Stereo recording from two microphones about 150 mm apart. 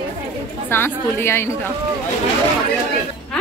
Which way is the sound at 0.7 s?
15° left (ahead or behind).